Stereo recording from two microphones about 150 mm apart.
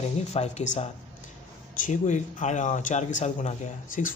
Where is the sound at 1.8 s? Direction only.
55° left (ahead or behind).